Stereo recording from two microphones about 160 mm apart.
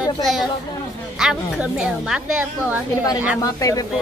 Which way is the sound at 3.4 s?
20° left (ahead or behind).